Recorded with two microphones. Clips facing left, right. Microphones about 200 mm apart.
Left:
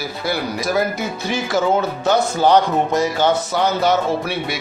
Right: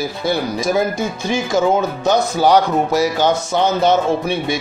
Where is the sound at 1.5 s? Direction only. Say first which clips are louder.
Right 2 dB; 15° right (ahead or behind).